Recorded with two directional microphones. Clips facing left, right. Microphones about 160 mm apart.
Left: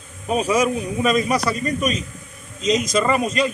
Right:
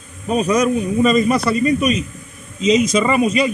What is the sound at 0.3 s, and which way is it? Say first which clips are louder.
Speech: right 3 dB; 5° left (ahead or behind).